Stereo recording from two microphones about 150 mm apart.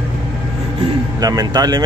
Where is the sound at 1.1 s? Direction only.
25° right (ahead or behind).